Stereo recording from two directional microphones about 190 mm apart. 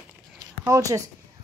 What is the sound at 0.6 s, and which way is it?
Speech, 15° right (ahead or behind).